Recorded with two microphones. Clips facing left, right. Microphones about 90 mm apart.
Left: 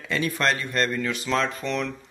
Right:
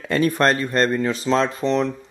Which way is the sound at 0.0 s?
45° right (ahead or behind).